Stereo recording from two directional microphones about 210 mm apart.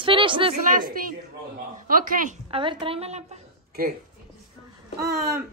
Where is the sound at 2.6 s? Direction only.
25° right (ahead or behind).